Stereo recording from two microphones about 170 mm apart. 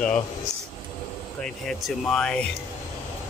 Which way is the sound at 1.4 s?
Centre (ahead or behind).